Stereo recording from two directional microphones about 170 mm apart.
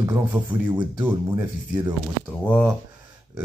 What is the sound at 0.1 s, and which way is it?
Speech, 25° right (ahead or behind).